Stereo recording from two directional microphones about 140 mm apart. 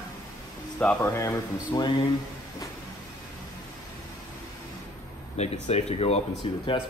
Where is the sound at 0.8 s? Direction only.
10° left (ahead or behind).